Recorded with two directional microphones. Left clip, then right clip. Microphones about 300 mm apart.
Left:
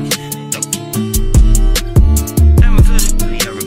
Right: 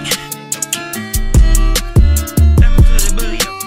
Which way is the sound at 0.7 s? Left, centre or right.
Right.